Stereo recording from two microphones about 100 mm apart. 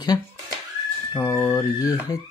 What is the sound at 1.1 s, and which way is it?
Speech, 30° left (ahead or behind).